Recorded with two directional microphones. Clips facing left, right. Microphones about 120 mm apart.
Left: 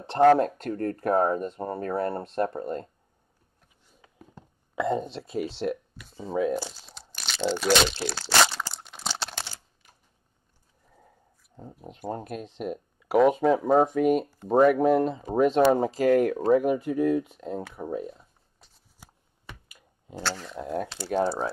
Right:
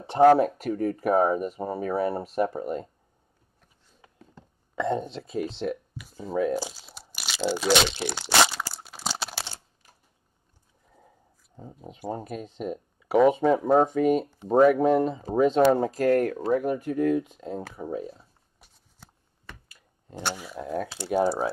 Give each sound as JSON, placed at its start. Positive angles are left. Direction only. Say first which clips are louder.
{"t": 0.0, "sound": "speech", "louder": "right 1 dB", "side_deg": -10}
{"t": 4.7, "sound": "speech", "louder": "even", "side_deg": 0}
{"t": 6.6, "sound": "crunch", "louder": "right 2 dB", "side_deg": -5}
{"t": 11.5, "sound": "speech", "louder": "even", "side_deg": 0}
{"t": 17.7, "sound": "a sound", "louder": "even", "side_deg": 0}
{"t": 18.9, "sound": "a sound", "louder": "even", "side_deg": 15}
{"t": 20.2, "sound": "speech", "louder": "even", "side_deg": -20}
{"t": 20.4, "sound": "speech", "louder": "even", "side_deg": 0}